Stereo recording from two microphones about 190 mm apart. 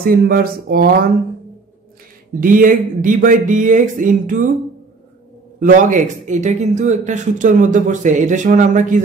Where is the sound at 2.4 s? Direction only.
45° right (ahead or behind).